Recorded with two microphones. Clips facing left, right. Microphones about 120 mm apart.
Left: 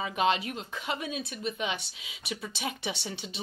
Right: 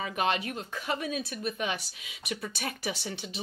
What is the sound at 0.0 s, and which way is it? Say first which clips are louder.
Speech: left 2 dB; 25° left (ahead or behind).